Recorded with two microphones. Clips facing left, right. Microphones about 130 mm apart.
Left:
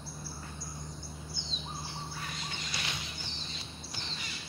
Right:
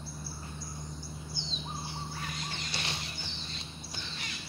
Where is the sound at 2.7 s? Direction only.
30° right (ahead or behind).